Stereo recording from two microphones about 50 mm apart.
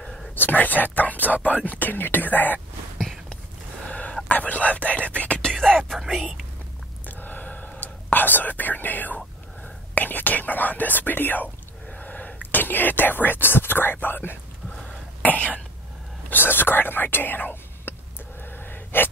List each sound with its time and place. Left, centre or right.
0.4 s speech: left
3.0 s a sound: centre
3.8 s whispering: left
7.1 s whispering: left
9.9 s speech: left
11.9 s whispering: left
14.0 s speech: left
15.2 s speech: left
16.3 s speech: left
18.4 s gasp: left